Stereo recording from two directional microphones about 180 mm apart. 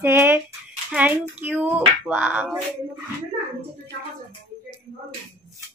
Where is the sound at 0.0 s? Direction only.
10° right (ahead or behind).